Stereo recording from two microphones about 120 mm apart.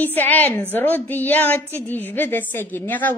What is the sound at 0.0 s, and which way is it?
Speech, 15° left (ahead or behind).